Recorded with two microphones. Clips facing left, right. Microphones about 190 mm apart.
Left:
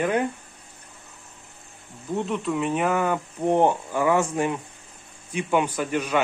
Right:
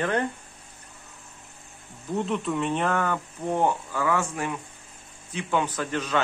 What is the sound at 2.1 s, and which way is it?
Speech, centre (ahead or behind).